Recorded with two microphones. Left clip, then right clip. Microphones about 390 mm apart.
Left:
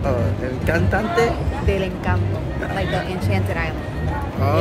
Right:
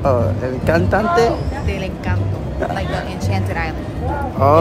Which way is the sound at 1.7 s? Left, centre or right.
Centre.